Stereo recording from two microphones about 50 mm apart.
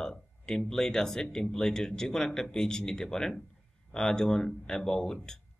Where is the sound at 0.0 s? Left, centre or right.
Centre.